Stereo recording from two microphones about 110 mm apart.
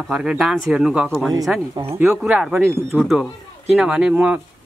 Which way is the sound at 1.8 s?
45° right (ahead or behind).